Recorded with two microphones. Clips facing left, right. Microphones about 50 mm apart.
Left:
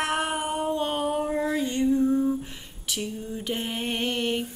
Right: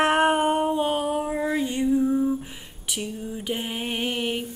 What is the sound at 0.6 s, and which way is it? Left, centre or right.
Female singing, centre.